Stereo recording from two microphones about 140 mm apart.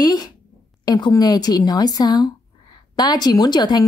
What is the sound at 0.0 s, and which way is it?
A woman's voice, 30° left (ahead or behind).